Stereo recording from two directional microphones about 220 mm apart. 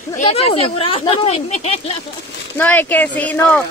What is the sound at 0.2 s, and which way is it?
Speech, 25° left (ahead or behind).